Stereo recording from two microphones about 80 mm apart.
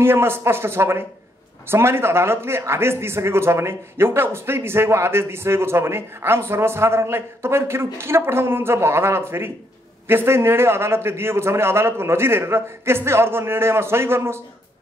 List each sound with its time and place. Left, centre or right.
0.0 s a man's voice: right